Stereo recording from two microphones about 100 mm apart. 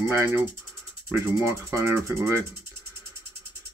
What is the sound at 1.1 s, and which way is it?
Speech, 25° right (ahead or behind).